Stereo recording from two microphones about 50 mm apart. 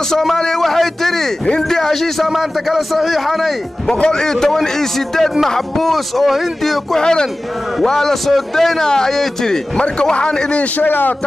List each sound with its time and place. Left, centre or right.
0.4 s speech: centre
2.2 s speech: centre
4.0 s a man's voice: centre
7.0 s a man's voice: centre
9.8 s speech: centre
10.8 s a man's voice: left